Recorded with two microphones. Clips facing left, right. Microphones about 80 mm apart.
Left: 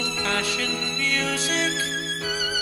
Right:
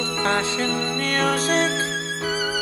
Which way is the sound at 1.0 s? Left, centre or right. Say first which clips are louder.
Right 4 dB; right.